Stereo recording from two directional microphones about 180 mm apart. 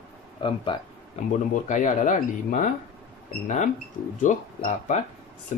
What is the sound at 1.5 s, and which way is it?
Speech, 45° left (ahead or behind).